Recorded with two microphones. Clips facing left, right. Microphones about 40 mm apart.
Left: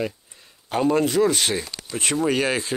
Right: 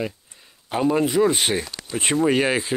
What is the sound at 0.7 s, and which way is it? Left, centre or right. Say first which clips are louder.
Speech: even; centre.